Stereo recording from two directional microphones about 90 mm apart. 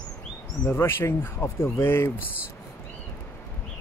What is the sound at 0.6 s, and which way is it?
Speech, 25° left (ahead or behind).